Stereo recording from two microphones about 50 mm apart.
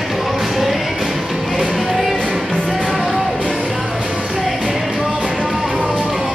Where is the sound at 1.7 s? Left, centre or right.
Centre.